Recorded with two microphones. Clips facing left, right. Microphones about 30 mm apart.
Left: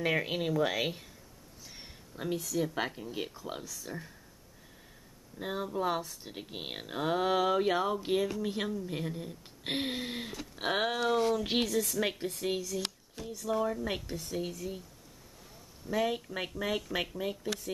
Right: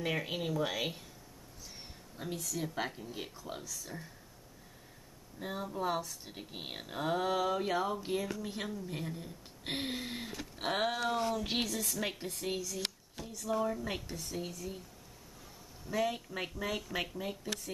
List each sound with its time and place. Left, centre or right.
0.0 s speech: centre
2.1 s speech: centre
2.4 s speech: centre
5.4 s a woman's voice: centre
15.9 s speech: centre